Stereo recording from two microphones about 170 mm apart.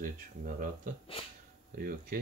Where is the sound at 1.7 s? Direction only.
60° right (ahead or behind).